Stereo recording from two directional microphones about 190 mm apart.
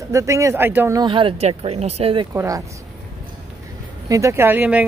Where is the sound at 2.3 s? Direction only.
15° right (ahead or behind).